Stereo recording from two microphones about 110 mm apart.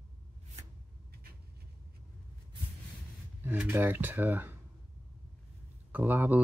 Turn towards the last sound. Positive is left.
turn(degrees=-15)  # may be behind; listen again after turning